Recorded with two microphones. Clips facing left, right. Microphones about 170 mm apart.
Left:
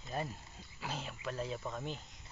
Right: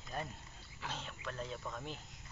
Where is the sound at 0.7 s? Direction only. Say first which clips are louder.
Left 3 dB; 5° left (ahead or behind).